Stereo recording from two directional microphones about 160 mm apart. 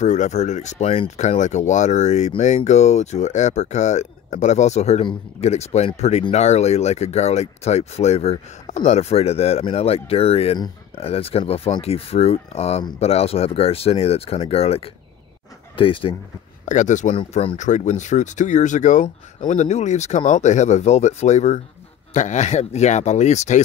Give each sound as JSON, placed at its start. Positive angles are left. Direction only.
{"t": 0.0, "sound": "speech", "side_deg": 45}
{"t": 16.6, "sound": "speech", "side_deg": 50}
{"t": 17.1, "sound": "speech", "side_deg": 35}